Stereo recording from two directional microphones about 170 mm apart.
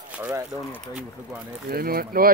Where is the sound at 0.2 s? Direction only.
20° right (ahead or behind).